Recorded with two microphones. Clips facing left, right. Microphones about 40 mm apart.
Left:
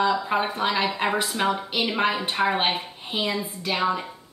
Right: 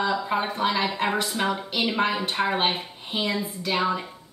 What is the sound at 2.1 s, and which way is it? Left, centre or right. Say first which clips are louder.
Speech: left 1 dB; left.